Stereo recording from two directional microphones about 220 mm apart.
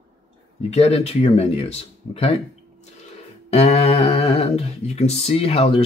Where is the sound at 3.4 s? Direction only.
30° left (ahead or behind).